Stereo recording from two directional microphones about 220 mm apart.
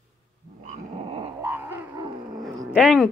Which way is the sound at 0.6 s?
25° right (ahead or behind).